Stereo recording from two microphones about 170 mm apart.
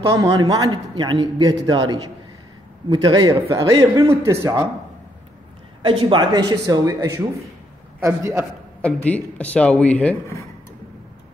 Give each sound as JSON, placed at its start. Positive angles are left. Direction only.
{"t": 0.2, "sound": "a man's voice", "side_deg": -25}
{"t": 5.8, "sound": "a man's voice", "side_deg": -30}
{"t": 8.8, "sound": "speech", "side_deg": 10}